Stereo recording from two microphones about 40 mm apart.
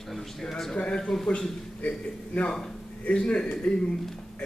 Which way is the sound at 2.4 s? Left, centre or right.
Centre.